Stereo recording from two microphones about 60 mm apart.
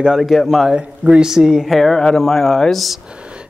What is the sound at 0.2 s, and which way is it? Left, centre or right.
Speech, centre.